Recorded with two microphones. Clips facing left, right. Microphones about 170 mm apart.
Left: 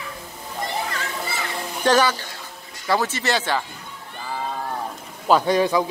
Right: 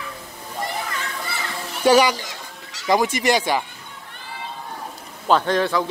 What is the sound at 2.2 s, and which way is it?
Fowl, 80° right.